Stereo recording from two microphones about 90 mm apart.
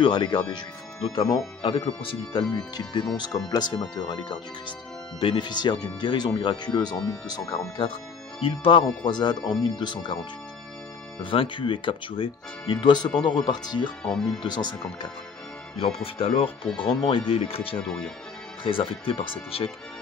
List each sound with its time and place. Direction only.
0.0 s speech: 65° left (ahead or behind); by 1.3 s 50° left (ahead or behind)
1.6 s speech: 75° left (ahead or behind)
2.5 s speech: 60° left (ahead or behind)
3.2 s speech: 50° left (ahead or behind)
3.7 s speech: 60° left (ahead or behind); by 7.7 s 45° left (ahead or behind)
7.7 s speech: 70° left (ahead or behind)
11.2 s speech: 70° left (ahead or behind)
12.7 s speech: 55° left (ahead or behind)
15.8 s speech: 90° left
16.7 s speech: 70° left (ahead or behind)
17.3 s speech: 90° left
17.8 s speech: 5° left (ahead or behind)
18.6 s speech: 75° left (ahead or behind)